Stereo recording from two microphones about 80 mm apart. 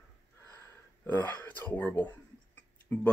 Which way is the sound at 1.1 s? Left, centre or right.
Centre.